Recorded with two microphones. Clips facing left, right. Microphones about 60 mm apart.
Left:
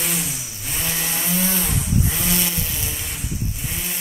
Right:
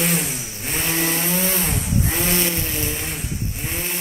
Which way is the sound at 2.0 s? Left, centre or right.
Right.